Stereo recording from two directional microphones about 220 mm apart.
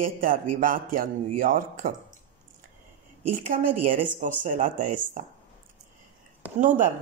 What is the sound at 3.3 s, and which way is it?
A woman's voice, 40° right (ahead or behind).